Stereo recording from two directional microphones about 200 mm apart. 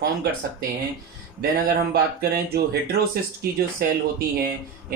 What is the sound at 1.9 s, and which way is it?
Speech, 50° right (ahead or behind).